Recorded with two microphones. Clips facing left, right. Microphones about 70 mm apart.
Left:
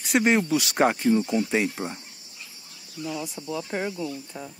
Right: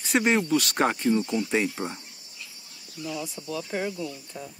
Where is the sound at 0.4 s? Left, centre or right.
Centre.